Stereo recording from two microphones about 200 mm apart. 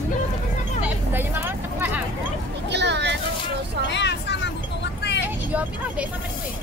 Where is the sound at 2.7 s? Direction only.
60° right (ahead or behind).